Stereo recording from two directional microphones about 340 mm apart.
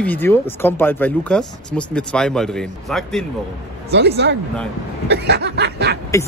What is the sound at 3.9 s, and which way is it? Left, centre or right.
Snicker, right.